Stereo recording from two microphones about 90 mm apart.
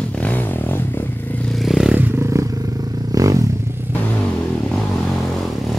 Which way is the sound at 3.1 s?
40° right (ahead or behind).